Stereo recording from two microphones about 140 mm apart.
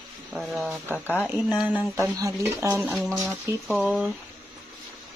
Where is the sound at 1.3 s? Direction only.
10° right (ahead or behind); by 3.5 s 25° right (ahead or behind).